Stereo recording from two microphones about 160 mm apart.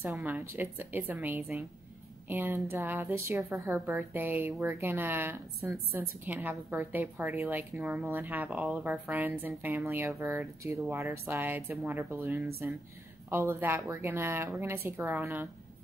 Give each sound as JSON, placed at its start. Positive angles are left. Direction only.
{"t": 0.2, "sound": "speech", "side_deg": -10}